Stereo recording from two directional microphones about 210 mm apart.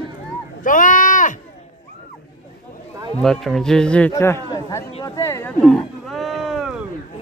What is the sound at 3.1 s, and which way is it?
A man's voice, 5° left (ahead or behind).